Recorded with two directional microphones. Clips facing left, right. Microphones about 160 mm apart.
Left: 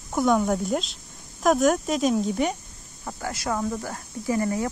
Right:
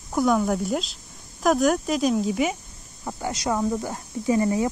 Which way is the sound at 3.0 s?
20° right (ahead or behind).